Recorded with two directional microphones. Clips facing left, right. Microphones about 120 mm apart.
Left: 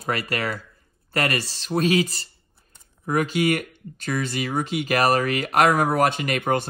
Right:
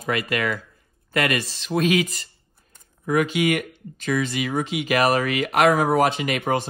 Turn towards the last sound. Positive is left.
turn(degrees=45)  # may be behind; listen again after turning